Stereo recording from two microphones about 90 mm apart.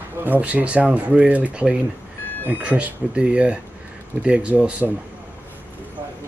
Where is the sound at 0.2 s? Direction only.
15° right (ahead or behind).